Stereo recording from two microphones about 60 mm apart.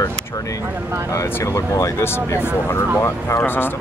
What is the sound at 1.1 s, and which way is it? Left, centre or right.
Speech, left.